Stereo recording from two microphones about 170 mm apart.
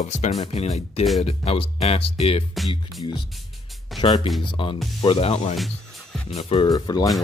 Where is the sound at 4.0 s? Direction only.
30° left (ahead or behind).